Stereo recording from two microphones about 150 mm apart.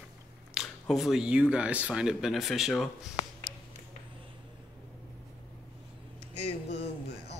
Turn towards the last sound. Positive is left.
turn(degrees=45)  # may be behind; listen again after turning